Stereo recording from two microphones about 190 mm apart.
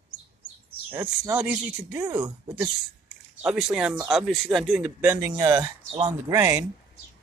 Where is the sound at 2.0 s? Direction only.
20° right (ahead or behind).